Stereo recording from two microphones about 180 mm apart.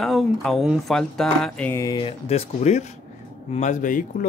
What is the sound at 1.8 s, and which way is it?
Speech, 25° left (ahead or behind).